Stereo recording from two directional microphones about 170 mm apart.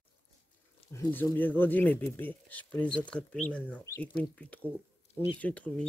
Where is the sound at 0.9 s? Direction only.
10° left (ahead or behind).